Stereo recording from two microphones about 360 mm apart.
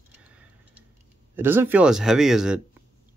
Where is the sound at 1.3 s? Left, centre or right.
Centre.